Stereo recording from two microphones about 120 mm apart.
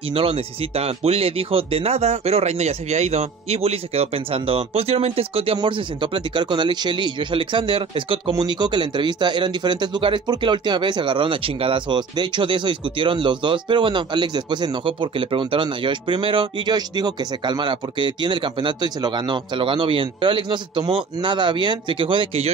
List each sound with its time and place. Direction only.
0.1 s a man's voice: 50° right (ahead or behind)